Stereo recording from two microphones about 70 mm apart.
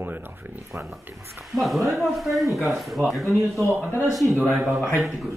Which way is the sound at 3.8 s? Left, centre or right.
Left.